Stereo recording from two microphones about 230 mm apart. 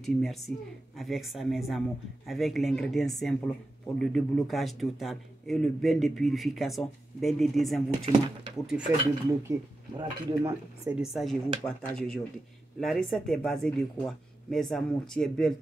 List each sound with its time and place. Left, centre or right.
0.0 s speech: centre
8.0 s speech: right
8.6 s speech: centre
11.0 s speech: centre